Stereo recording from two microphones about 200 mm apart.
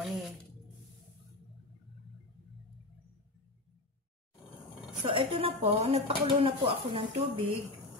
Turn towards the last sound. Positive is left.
turn(degrees=-30)  # may be behind; listen again after turning